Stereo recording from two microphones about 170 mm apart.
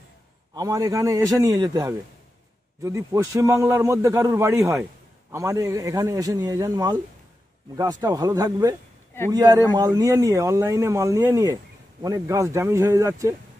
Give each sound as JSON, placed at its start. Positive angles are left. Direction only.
{"t": 0.6, "sound": "a man's voice", "side_deg": -20}